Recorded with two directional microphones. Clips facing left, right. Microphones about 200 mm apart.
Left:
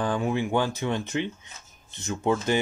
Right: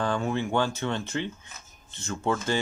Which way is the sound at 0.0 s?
15° left (ahead or behind).